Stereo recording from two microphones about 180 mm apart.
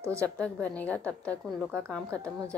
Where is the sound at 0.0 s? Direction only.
15° right (ahead or behind).